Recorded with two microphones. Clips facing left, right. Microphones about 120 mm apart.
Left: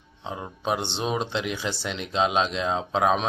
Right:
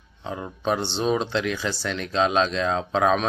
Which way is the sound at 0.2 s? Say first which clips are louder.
Right 3 dB; 15° left (ahead or behind).